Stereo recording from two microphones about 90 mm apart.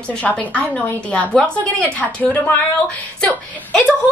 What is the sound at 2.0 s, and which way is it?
Speech, 15° left (ahead or behind).